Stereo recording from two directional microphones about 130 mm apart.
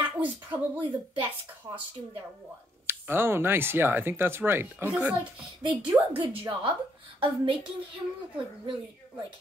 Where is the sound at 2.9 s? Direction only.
15° right (ahead or behind).